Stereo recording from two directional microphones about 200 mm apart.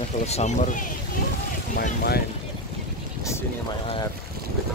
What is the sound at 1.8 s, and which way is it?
Speech, 50° left (ahead or behind).